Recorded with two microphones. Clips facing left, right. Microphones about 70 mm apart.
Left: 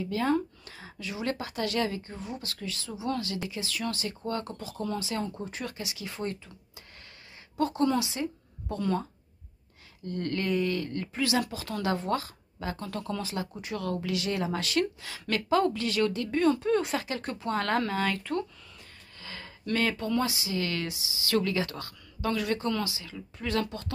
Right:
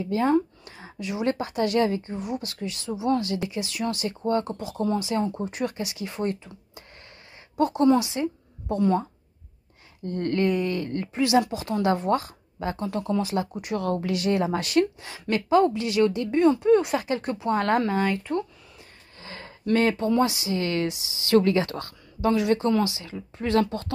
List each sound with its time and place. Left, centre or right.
0.0 s a woman's voice: right
7.5 s speech: right
10.0 s a woman's voice: right
13.8 s a woman's voice: right; by 16.7 s centre
16.7 s a woman's voice: right